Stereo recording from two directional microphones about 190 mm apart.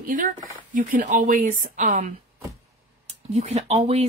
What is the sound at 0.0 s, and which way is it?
A woman's voice, 45° right (ahead or behind).